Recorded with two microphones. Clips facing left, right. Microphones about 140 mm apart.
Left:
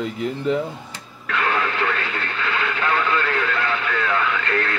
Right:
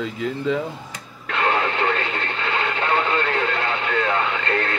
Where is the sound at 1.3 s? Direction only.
30° right (ahead or behind).